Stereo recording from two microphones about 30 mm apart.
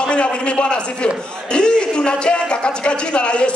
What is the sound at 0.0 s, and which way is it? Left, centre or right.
A man's voice, left.